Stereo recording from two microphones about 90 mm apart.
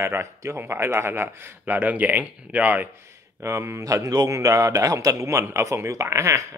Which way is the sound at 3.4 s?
30° right (ahead or behind).